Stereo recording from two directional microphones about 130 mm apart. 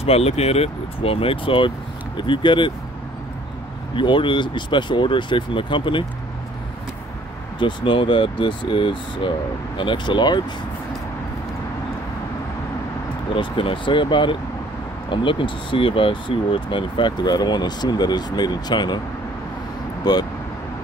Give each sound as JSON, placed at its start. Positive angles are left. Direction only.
{"t": 0.0, "sound": "speech", "side_deg": 50}
{"t": 3.9, "sound": "speech", "side_deg": 40}
{"t": 7.5, "sound": "speech", "side_deg": 40}
{"t": 13.3, "sound": "speech", "side_deg": 40}
{"t": 20.1, "sound": "speech", "side_deg": 30}